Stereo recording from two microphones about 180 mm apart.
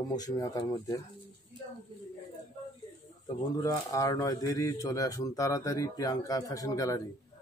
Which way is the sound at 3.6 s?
20° left (ahead or behind).